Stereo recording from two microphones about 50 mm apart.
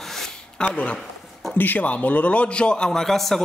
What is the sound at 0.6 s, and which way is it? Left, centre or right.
Speech, centre.